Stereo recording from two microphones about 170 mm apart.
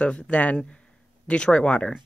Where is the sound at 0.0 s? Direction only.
5° left (ahead or behind).